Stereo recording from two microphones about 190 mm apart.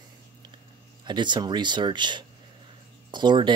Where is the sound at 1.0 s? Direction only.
25° right (ahead or behind).